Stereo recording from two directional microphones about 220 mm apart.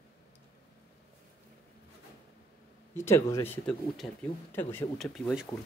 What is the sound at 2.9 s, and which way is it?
Speech, 10° left (ahead or behind).